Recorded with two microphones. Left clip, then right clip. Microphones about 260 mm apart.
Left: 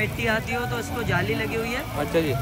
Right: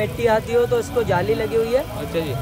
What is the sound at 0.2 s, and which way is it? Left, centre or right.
Speech, centre.